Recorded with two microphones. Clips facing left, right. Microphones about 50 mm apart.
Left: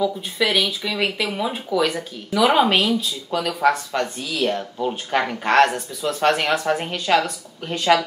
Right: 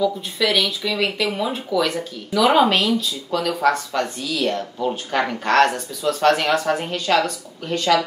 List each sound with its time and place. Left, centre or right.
0.0 s speech: centre